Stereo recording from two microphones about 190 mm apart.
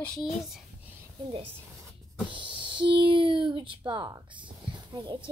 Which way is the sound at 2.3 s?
25° right (ahead or behind).